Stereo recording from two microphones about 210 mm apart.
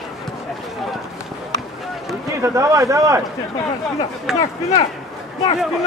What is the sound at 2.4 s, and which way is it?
Speech, 15° right (ahead or behind).